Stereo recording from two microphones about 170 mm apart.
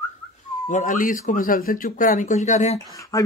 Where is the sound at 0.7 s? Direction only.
50° left (ahead or behind).